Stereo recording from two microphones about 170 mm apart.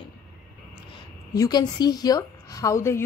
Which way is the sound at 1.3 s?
25° left (ahead or behind).